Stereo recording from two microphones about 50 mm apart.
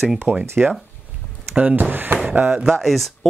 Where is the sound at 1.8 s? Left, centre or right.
Right.